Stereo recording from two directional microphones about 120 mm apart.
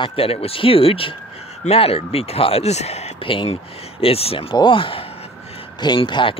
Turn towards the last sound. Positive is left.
turn(degrees=45)  # may be behind; listen again after turning